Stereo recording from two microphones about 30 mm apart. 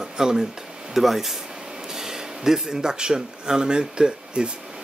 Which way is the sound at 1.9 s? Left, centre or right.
Centre.